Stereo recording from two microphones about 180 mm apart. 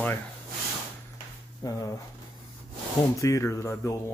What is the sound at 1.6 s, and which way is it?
Speech, 20° left (ahead or behind).